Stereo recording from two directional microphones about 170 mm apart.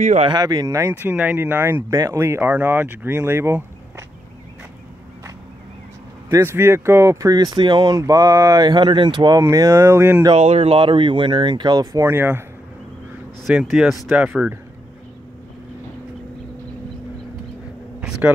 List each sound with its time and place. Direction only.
0.0 s speech: 45° right (ahead or behind)
0.3 s speech: 25° right (ahead or behind)
6.3 s speech: 15° right (ahead or behind)
10.3 s speech: 40° right (ahead or behind); by 12.4 s 15° right (ahead or behind)
13.5 s speech: centre (ahead or behind)